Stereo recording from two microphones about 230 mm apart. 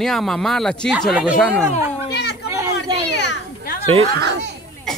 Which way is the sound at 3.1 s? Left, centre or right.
Left.